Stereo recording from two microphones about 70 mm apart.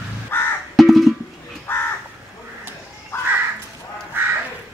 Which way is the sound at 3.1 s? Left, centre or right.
Left.